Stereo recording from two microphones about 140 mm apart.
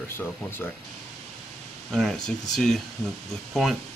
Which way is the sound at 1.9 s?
5° left (ahead or behind).